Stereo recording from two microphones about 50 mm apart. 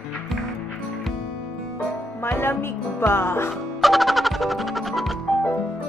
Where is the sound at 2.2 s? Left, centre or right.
Left.